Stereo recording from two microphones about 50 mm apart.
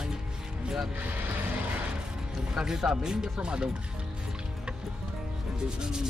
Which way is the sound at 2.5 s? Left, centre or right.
Centre.